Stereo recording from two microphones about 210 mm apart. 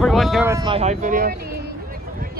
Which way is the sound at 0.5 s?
15° right (ahead or behind).